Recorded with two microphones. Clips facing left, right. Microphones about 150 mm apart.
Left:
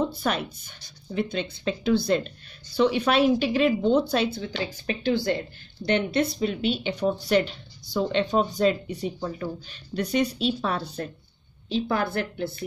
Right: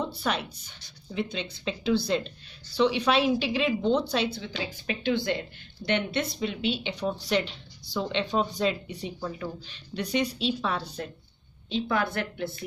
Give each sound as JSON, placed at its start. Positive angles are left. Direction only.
{"t": 0.0, "sound": "a woman's voice", "side_deg": 45}